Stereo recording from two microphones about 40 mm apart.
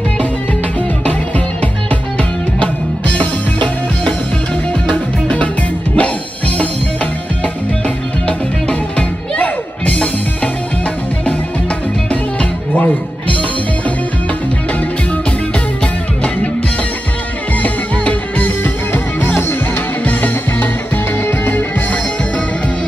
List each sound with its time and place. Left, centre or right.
1.6 s music: left
5.9 s music: left
8.3 s music: left
12.1 s music: left
17.6 s music: left
21.3 s music: left